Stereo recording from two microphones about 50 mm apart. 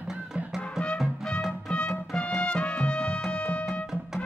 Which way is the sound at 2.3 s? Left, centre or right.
Left.